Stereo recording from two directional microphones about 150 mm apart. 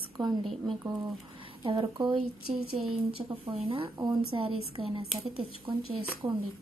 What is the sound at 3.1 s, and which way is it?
A woman's voice, 40° right (ahead or behind).